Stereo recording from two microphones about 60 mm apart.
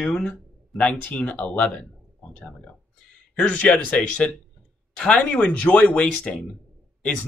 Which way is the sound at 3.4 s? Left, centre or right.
Left.